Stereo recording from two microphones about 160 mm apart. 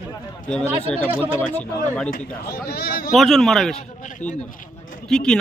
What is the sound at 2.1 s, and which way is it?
Speech, 70° left (ahead or behind).